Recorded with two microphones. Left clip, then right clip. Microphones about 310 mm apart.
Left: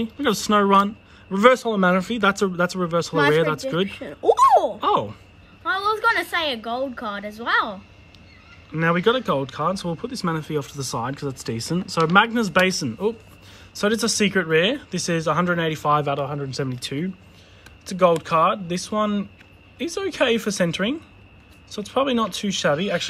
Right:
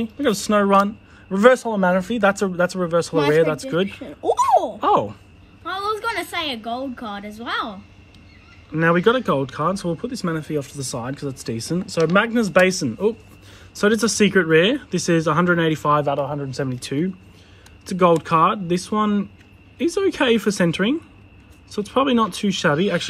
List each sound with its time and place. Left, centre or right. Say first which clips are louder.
0.0 s speech: right 1 dB; centre
3.8 s hiccup: left 3 dB; left
4.7 s speech: right 3 dB; centre
5.6 s a woman's voice: left 3 dB; left
8.7 s speech: right 3 dB; centre